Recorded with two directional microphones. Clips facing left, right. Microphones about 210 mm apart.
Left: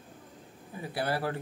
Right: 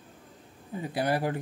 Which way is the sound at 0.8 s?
20° right (ahead or behind).